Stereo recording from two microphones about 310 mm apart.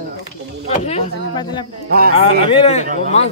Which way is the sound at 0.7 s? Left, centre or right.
Centre.